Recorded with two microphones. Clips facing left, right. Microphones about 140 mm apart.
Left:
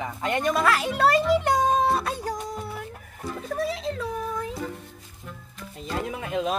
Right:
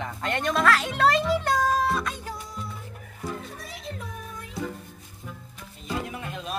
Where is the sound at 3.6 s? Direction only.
90° left.